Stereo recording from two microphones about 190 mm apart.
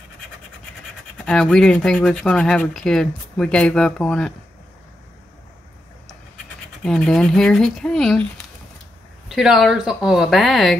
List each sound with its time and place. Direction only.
1.1 s speech: 5° left (ahead or behind)
6.8 s speech: 5° left (ahead or behind)
9.3 s speech: centre (ahead or behind)